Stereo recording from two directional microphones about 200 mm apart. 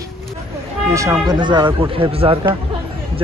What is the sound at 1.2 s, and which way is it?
A man's voice, 20° right (ahead or behind).